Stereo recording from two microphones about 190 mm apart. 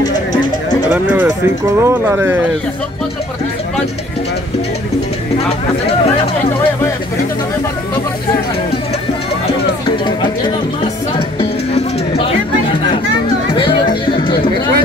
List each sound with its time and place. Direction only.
0.9 s speech: 10° right (ahead or behind)
11.1 s music: 30° left (ahead or behind)
13.5 s music: 25° left (ahead or behind)